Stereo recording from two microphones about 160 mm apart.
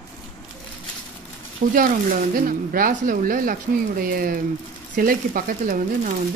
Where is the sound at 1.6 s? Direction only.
50° right (ahead or behind).